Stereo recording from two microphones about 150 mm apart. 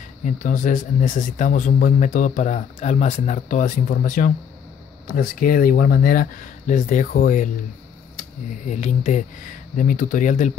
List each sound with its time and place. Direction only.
0.2 s speech: 60° left (ahead or behind)
8.6 s speech: 55° left (ahead or behind)